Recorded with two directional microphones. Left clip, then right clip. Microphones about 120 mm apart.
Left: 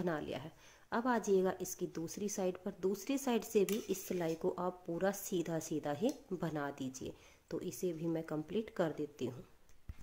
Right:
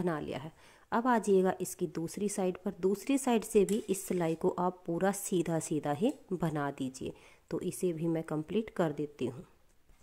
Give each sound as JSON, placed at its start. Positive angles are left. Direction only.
{"t": 0.0, "sound": "a woman's voice", "side_deg": -45}